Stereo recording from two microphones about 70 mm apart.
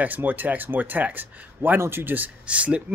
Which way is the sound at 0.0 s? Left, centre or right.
Right.